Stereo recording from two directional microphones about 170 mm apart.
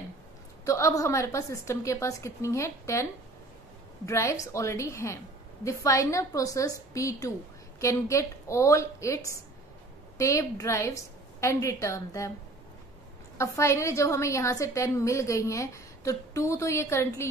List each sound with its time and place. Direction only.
0.7 s a woman's voice: 20° left (ahead or behind)
13.4 s a woman's voice: 15° left (ahead or behind)